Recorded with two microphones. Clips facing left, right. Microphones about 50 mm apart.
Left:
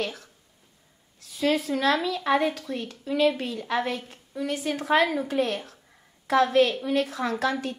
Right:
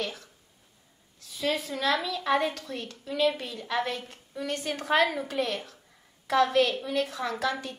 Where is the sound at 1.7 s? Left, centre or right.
Left.